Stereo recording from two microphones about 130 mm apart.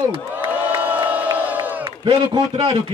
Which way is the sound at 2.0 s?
35° right (ahead or behind).